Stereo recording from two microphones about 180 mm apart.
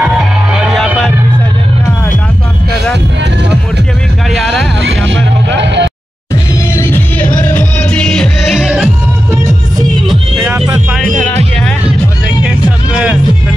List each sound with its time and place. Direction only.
0.0 s music: 5° right (ahead or behind)
4.3 s vehicle: centre (ahead or behind)
4.8 s vehicle: 90° right
6.7 s music: 15° left (ahead or behind); by 8.9 s 5° right (ahead or behind)
12.4 s music: 5° right (ahead or behind)